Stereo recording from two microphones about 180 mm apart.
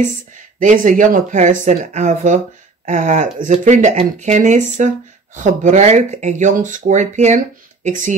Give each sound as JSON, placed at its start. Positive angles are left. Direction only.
{"t": 0.6, "sound": "speech", "side_deg": -45}